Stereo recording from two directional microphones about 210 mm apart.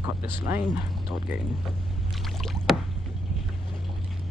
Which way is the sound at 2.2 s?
Centre (ahead or behind).